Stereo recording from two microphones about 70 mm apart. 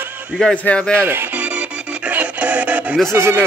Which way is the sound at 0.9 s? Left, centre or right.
Right.